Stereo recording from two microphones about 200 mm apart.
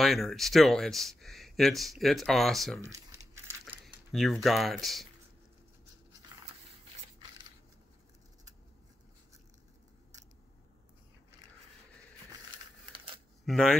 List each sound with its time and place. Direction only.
0.0 s speech: centre (ahead or behind)
2.8 s crumpling: 15° right (ahead or behind)
3.8 s speech: centre (ahead or behind)
6.3 s a sound: 20° right (ahead or behind)
13.5 s speech: centre (ahead or behind)